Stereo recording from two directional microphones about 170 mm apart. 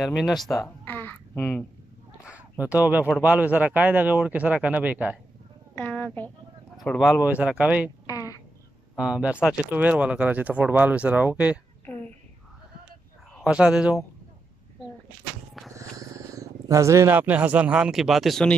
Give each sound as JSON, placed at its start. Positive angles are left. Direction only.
{"t": 0.0, "sound": "speech", "side_deg": 0}
{"t": 0.7, "sound": "babbling", "side_deg": 10}
{"t": 2.6, "sound": "speech", "side_deg": -10}
{"t": 5.8, "sound": "speech", "side_deg": 10}
{"t": 8.1, "sound": "a sound", "side_deg": 20}
{"t": 8.9, "sound": "speech", "side_deg": -5}
{"t": 13.4, "sound": "speech", "side_deg": -5}
{"t": 15.7, "sound": "speech", "side_deg": -20}